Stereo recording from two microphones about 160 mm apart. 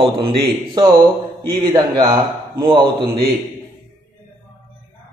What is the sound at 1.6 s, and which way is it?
A man's voice, 25° right (ahead or behind).